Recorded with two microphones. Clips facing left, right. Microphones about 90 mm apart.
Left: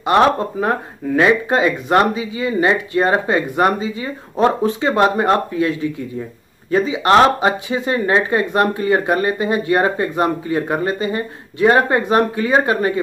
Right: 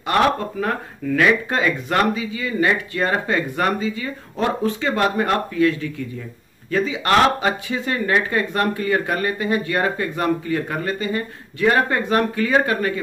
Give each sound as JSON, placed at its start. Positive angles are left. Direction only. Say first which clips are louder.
{"t": 0.0, "sound": "speech", "louder": "left 4 dB", "side_deg": 25}